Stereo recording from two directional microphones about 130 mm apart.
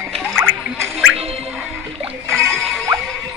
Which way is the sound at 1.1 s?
50° right (ahead or behind).